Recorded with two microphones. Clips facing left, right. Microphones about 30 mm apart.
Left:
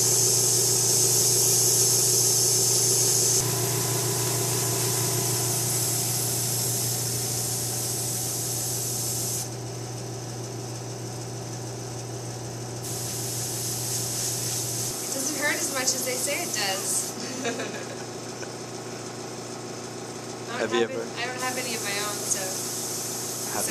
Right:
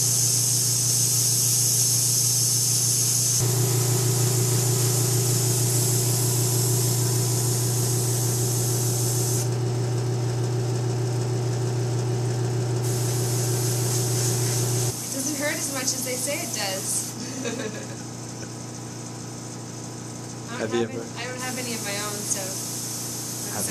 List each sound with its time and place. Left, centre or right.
0.0 s vehicle: centre
4.2 s vehicle: left
5.4 s vehicle: centre
15.2 s a sound: centre
17.4 s speech: centre
20.5 s speech: left
20.9 s speech: centre